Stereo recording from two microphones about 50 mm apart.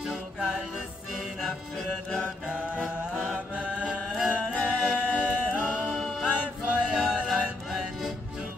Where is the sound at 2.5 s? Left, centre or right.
Right.